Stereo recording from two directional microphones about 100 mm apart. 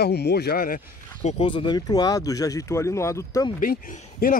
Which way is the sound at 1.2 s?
75° left (ahead or behind).